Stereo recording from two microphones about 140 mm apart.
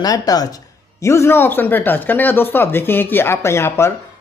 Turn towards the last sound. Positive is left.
turn(degrees=20)  # may be behind; listen again after turning